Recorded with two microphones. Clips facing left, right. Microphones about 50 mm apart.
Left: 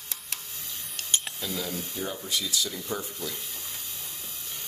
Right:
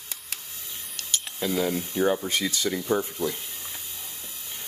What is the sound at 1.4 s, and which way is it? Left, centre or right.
Speech, right.